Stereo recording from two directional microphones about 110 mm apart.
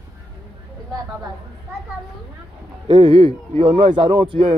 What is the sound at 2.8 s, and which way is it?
A man's voice, 55° right (ahead or behind).